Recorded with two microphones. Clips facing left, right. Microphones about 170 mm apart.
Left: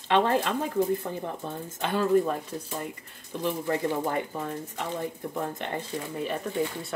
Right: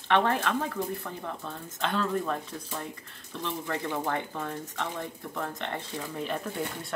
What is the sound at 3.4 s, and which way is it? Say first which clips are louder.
Speech: left 5 dB; 15° left (ahead or behind).